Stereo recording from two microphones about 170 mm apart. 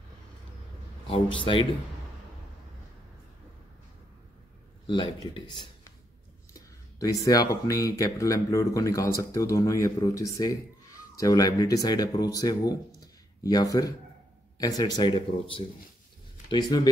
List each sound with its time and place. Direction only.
1.0 s speech: 30° left (ahead or behind)
4.8 s speech: 30° left (ahead or behind)
7.0 s speech: 20° left (ahead or behind)